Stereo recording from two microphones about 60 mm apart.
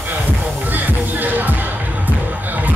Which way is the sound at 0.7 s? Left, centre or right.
Right.